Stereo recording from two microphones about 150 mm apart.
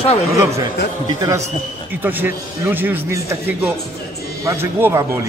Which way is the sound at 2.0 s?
10° right (ahead or behind).